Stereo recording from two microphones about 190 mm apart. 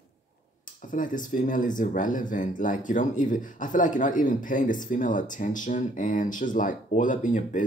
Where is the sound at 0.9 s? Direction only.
45° left (ahead or behind).